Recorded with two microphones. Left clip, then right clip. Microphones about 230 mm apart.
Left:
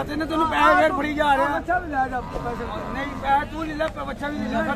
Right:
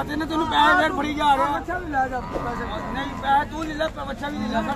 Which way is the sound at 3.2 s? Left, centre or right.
Centre.